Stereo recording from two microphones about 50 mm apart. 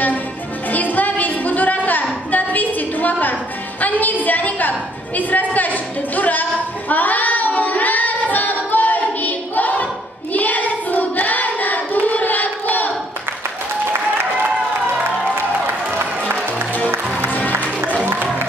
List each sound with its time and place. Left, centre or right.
0.7 s music: left
3.8 s a sound: left
6.9 s child singing: left
10.3 s hands: left
15.6 s music: right
17.3 s music: left
18.0 s music: right